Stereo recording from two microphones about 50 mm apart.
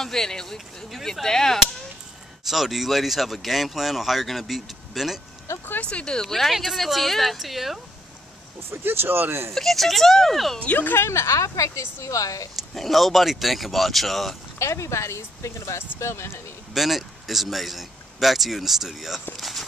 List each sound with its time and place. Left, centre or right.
0.0 s speech: centre
0.8 s speech: centre
2.4 s speech: centre
5.8 s speech: left
6.2 s speech: centre
8.6 s speech: right
9.5 s speech: centre
10.6 s speech: left
11.0 s speech: left
12.5 s speech: centre
14.6 s speech: left
16.0 s speech: left
16.7 s speech: centre